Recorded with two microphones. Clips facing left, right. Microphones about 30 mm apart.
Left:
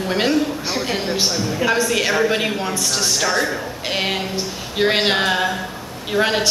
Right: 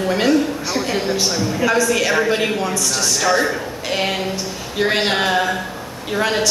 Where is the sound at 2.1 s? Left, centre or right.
Centre.